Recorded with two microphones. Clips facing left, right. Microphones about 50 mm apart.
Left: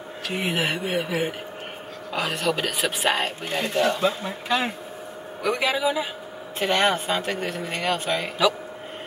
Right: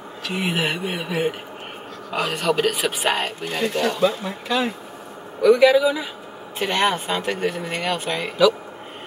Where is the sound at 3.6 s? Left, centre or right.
Left.